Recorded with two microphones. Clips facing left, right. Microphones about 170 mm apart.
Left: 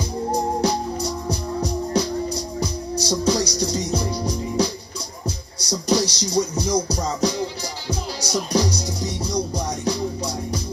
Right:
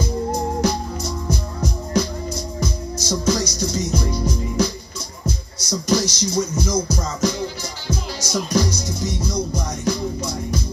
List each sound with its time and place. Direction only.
0.3 s music: 35° left (ahead or behind)
2.6 s music: 35° left (ahead or behind)